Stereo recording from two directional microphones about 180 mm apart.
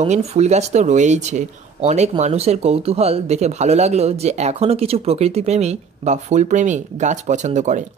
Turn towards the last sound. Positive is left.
turn(degrees=-40)  # may be behind; listen again after turning